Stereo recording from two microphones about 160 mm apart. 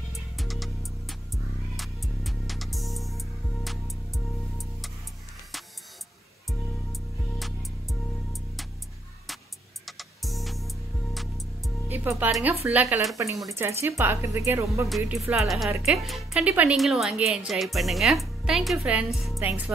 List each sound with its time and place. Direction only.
0.1 s music: centre (ahead or behind)
6.9 s music: centre (ahead or behind)
9.8 s music: centre (ahead or behind)
11.9 s music: 10° right (ahead or behind)
12.3 s speech: centre (ahead or behind)
13.5 s speech: 15° right (ahead or behind)
15.0 s speech: 5° right (ahead or behind)